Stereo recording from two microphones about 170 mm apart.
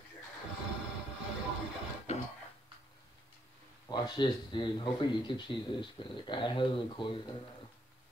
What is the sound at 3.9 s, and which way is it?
Speech, 25° left (ahead or behind).